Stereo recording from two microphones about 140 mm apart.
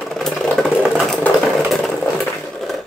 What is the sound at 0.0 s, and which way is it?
Vehicle, centre (ahead or behind).